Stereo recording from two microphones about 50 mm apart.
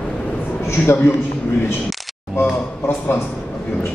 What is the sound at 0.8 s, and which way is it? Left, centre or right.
Speech, left.